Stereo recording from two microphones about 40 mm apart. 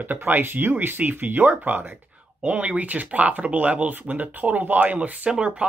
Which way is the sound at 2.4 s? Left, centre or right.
Right.